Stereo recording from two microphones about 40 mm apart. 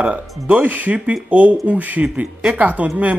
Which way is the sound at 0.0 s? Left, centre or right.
Right.